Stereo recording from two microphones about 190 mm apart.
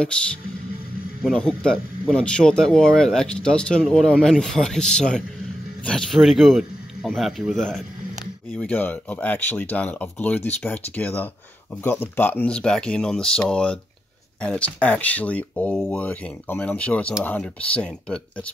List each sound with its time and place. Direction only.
1.2 s a man's voice: centre (ahead or behind)